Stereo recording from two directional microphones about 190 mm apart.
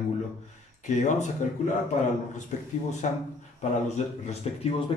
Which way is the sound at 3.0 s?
40° left (ahead or behind).